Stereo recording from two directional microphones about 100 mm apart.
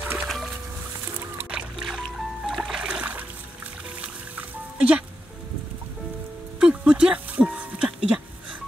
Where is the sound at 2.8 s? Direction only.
10° right (ahead or behind).